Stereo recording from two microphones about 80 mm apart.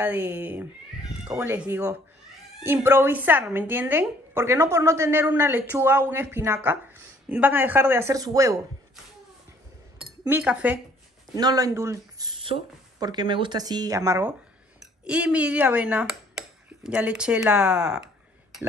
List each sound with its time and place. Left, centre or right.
0.0 s speech: centre
1.7 s a woman's voice: right
8.1 s speech: right
10.4 s speech: centre
11.3 s speech: right
11.7 s a woman's voice: right
12.2 s speech: right
13.6 s speech: right
14.8 s speech: centre